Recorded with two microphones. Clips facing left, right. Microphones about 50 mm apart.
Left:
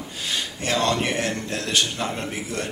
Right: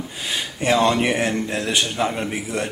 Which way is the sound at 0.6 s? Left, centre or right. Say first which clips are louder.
Right 6 dB; centre.